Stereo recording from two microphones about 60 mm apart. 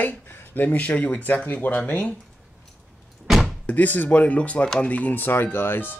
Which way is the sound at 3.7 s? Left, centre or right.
Left.